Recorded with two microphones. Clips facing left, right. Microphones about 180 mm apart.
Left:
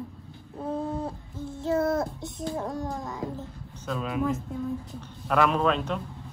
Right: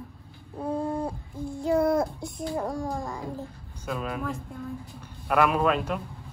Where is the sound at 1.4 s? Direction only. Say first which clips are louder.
Right 3 dB; 20° left (ahead or behind).